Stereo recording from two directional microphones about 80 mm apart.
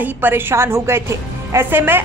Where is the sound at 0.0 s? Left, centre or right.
Right.